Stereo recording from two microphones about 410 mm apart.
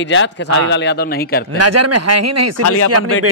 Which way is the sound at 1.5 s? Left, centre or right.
Right.